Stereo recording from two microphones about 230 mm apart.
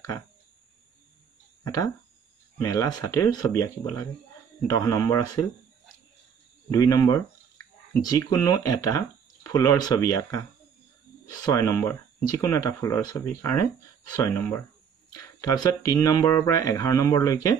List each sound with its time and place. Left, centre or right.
2.6 s speech: centre
6.7 s speech: centre
11.4 s speech: centre